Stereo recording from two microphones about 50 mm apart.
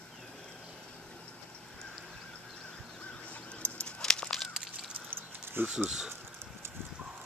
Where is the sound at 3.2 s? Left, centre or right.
Left.